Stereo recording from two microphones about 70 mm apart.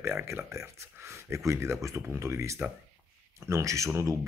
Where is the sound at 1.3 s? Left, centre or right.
Right.